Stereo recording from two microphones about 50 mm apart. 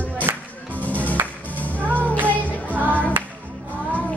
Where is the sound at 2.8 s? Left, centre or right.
Left.